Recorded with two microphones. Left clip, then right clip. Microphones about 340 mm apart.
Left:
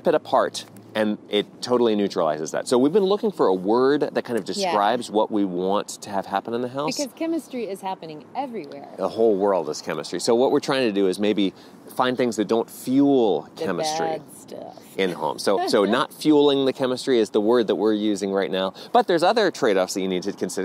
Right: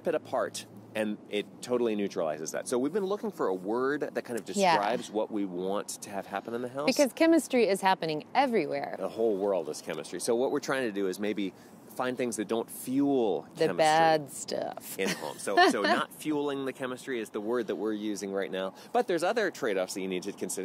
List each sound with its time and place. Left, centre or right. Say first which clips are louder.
0.0 s speech: left 10 dB; left
7.2 s speech: right 3 dB; right
9.0 s speech: left 11 dB; left
14.0 s speech: right 2 dB; right
15.0 s speech: left 10 dB; left